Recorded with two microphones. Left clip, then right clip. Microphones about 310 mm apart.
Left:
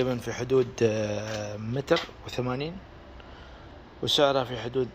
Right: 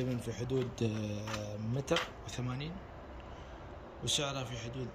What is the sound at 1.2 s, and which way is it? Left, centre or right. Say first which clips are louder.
Speech: left 7 dB; left.